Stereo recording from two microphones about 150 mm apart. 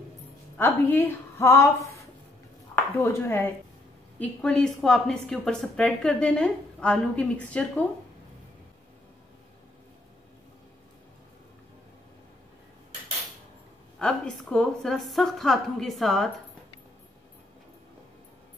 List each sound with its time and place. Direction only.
0.6 s a woman's voice: 15° left (ahead or behind)
4.2 s a woman's voice: 5° left (ahead or behind)
13.9 s a woman's voice: 5° left (ahead or behind)